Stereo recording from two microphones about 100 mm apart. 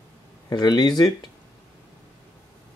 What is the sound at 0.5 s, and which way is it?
Speech, 40° left (ahead or behind).